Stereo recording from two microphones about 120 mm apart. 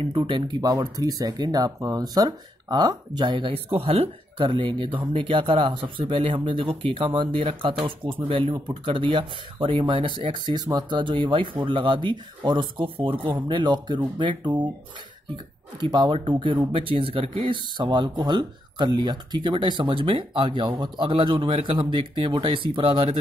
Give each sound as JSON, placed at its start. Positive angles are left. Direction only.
{"t": 0.2, "sound": "speech", "side_deg": -40}
{"t": 15.8, "sound": "speech", "side_deg": -40}